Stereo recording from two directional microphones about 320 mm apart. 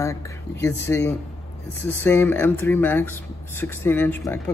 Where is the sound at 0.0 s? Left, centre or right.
Centre.